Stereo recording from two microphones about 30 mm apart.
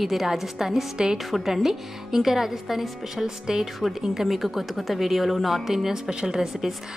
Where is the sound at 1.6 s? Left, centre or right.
Centre.